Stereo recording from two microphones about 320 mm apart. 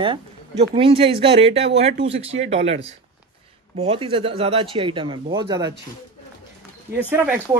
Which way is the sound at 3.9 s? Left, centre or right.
Centre.